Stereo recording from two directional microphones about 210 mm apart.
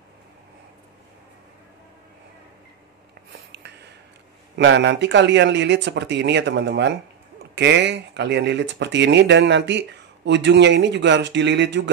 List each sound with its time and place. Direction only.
4.6 s speech: 55° right (ahead or behind)